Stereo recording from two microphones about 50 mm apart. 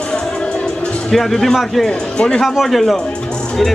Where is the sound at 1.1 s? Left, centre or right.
Centre.